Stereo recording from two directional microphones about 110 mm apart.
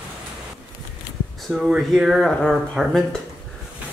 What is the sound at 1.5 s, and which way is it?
Speech, centre (ahead or behind).